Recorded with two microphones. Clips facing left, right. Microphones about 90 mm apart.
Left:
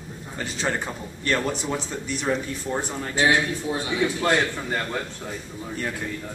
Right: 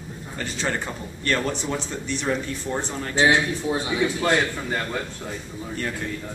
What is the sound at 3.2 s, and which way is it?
Speech, 25° right (ahead or behind).